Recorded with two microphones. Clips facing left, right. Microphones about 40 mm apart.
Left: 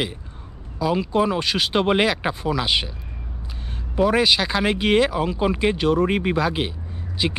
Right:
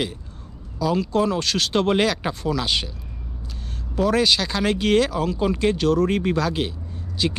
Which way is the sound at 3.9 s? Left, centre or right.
Centre.